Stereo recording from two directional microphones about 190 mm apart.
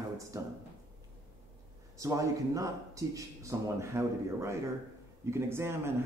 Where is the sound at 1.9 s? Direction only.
15° right (ahead or behind).